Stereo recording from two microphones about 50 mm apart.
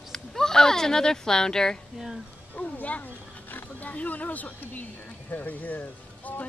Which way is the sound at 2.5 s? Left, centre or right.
Left.